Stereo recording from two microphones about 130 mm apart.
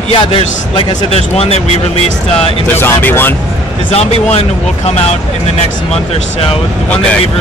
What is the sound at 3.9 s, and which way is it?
Speech, 55° left (ahead or behind).